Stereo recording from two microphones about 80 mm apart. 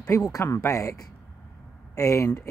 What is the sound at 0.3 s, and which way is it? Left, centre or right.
Speech, left.